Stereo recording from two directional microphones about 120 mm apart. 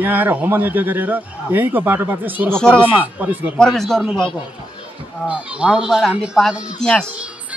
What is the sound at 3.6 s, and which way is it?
Speech, 5° left (ahead or behind).